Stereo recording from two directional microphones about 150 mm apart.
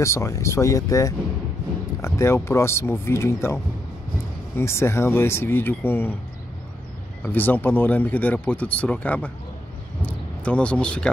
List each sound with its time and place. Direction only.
0.0 s speech: 20° left (ahead or behind)
4.6 s speech: 15° left (ahead or behind)
7.2 s speech: 15° left (ahead or behind)